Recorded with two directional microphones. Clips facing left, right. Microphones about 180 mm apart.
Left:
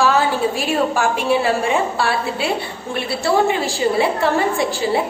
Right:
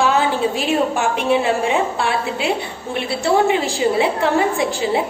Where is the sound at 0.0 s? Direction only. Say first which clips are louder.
Even; 20° right (ahead or behind).